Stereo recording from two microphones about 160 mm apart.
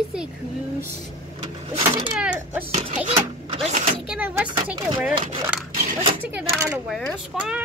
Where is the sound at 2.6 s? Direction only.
45° right (ahead or behind).